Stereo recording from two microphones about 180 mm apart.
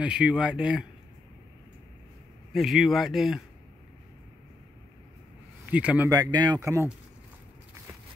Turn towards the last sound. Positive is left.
turn(degrees=-15)  # may be behind; listen again after turning